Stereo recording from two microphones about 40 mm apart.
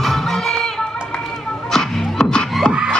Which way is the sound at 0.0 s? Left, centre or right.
Centre.